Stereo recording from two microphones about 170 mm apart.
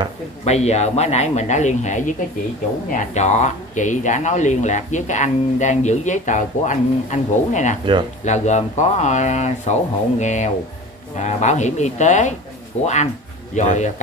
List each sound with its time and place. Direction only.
0.5 s speech: 40° left (ahead or behind)